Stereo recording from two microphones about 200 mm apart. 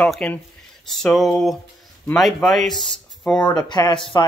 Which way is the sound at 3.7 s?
20° left (ahead or behind).